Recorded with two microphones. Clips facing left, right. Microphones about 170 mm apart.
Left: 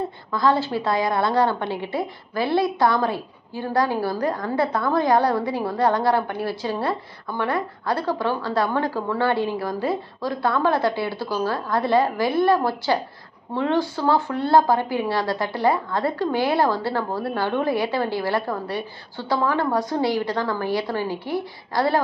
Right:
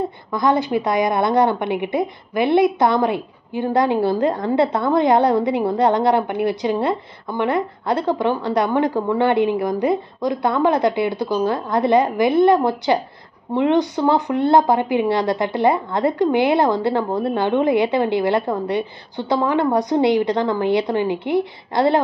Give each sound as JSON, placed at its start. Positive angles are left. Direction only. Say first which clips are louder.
{"t": 0.3, "sound": "a woman's voice", "louder": "right 2 dB", "side_deg": -20}